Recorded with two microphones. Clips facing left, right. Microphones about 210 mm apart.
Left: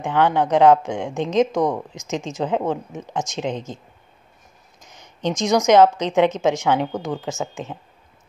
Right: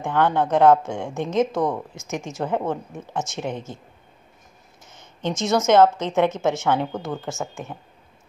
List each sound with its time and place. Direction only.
0.0 s a woman's voice: 15° left (ahead or behind)
4.8 s a woman's voice: 15° left (ahead or behind)